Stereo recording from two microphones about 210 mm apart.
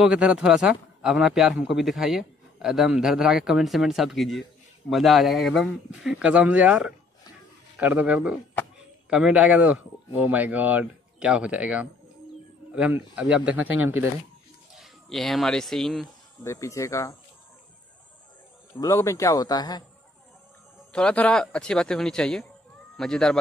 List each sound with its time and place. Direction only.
0.0 s a man's voice: 5° right (ahead or behind)
14.8 s speech: centre (ahead or behind)
16.4 s speech: 15° left (ahead or behind)
18.7 s speech: 15° left (ahead or behind)
20.9 s a man's voice: 5° left (ahead or behind)